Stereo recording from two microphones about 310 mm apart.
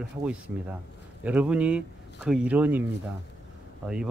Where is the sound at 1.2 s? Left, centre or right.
Centre.